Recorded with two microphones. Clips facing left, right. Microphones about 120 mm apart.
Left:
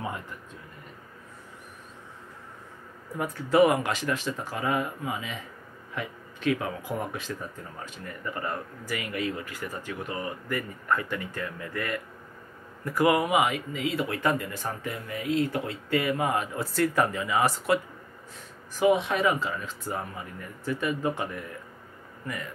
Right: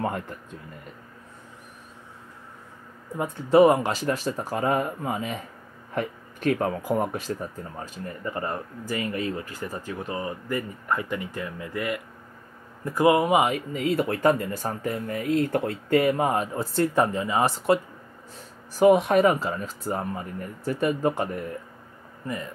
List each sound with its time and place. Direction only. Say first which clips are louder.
3.2 s speech: right 4 dB; 25° right (ahead or behind)
18.7 s speech: right 5 dB; 40° right (ahead or behind)